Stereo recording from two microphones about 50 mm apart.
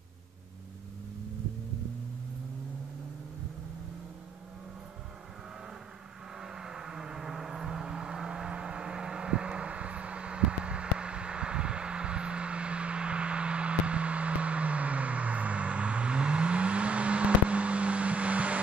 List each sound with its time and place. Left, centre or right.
6.4 s vehicle: centre